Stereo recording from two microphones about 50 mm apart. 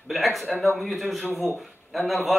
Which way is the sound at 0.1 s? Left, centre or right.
Centre.